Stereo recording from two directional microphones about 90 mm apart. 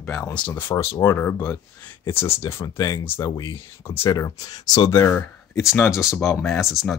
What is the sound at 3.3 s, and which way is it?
Speech, 45° left (ahead or behind).